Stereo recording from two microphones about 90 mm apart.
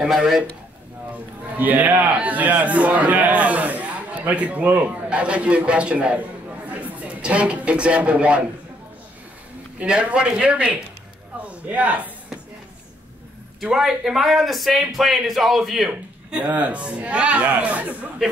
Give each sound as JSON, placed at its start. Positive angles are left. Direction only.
{"t": 0.0, "sound": "a man's voice", "side_deg": -5}
{"t": 1.1, "sound": "a man's voice", "side_deg": -20}
{"t": 9.8, "sound": "a man's voice", "side_deg": -15}
{"t": 11.4, "sound": "a sound", "side_deg": -15}
{"t": 13.6, "sound": "a man's voice", "side_deg": -5}
{"t": 15.9, "sound": "a man's voice", "side_deg": -15}